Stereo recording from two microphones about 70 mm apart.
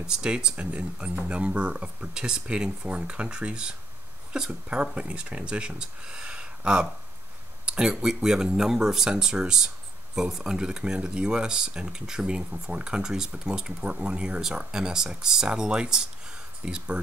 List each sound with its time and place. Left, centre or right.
0.0 s speech: centre